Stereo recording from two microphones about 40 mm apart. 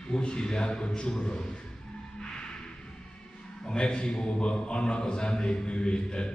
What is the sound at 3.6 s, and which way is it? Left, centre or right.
A man's voice, left.